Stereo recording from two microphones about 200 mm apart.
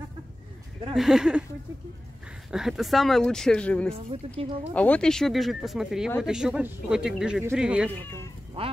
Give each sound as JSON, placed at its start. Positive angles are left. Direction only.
{"t": 0.9, "sound": "speech", "side_deg": -5}
{"t": 2.5, "sound": "speech", "side_deg": 0}
{"t": 4.1, "sound": "speech", "side_deg": -30}
{"t": 4.7, "sound": "speech", "side_deg": 5}
{"t": 7.9, "sound": "speech", "side_deg": 10}
{"t": 8.6, "sound": "speech", "side_deg": -30}